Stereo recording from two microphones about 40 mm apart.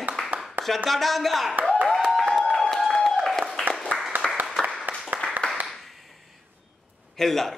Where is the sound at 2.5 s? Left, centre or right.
Centre.